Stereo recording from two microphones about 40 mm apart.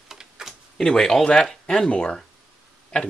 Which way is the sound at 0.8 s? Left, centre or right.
Centre.